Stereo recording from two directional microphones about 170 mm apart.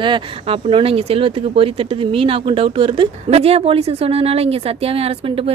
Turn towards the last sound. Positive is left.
turn(degrees=-35)  # may be behind; listen again after turning